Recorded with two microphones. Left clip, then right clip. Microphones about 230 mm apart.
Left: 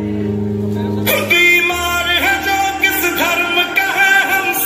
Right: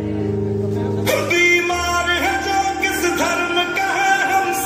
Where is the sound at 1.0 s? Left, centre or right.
Right.